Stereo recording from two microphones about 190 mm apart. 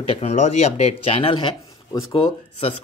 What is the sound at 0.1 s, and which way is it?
Speech, 35° left (ahead or behind).